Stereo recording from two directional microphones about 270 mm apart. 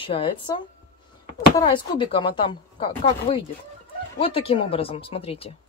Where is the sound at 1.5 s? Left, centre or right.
Centre.